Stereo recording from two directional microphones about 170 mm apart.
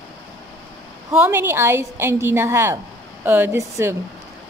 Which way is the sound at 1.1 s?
10° right (ahead or behind).